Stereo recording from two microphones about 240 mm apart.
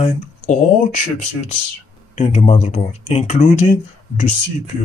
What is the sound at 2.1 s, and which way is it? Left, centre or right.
Speech, left.